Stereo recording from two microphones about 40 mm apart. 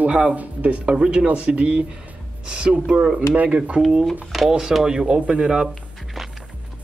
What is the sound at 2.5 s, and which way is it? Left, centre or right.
Speech, right.